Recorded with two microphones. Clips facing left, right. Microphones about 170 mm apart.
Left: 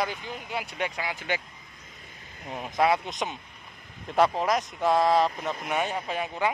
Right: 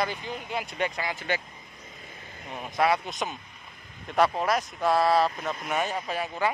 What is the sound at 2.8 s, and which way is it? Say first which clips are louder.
Speech: left 1 dB; 20° left (ahead or behind).